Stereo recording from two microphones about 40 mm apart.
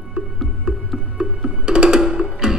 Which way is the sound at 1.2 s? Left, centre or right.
Right.